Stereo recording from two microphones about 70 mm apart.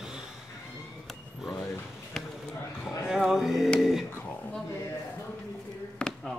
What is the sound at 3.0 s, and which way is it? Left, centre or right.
Music, centre.